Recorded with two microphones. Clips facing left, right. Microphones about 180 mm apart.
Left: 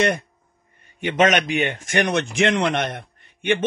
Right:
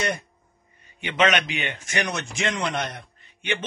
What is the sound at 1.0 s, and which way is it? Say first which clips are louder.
Speech: left 4 dB; 45° left (ahead or behind).